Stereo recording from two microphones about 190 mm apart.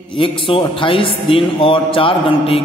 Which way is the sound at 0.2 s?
25° left (ahead or behind).